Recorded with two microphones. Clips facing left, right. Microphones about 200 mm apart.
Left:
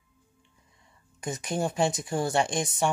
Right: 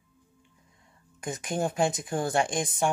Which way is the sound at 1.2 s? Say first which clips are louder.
Left 1 dB; 50° right (ahead or behind).